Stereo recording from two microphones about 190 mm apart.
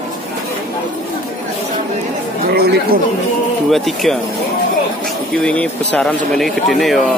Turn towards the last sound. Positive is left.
turn(degrees=0)  # may be behind; listen again after turning